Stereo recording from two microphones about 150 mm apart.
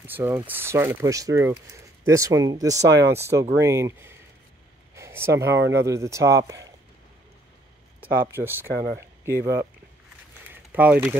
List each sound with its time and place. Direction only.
0.0 s speech: 15° right (ahead or behind)
8.2 s speech: 15° right (ahead or behind)
10.5 s a sound: 10° right (ahead or behind)